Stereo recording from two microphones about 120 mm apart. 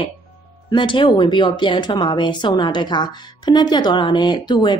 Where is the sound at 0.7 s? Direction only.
40° left (ahead or behind).